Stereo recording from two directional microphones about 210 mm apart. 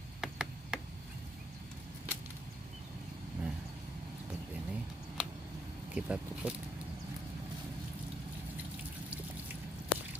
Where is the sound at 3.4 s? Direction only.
5° right (ahead or behind).